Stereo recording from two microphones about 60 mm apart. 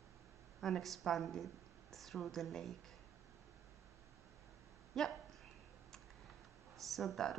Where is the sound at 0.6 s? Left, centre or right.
Centre.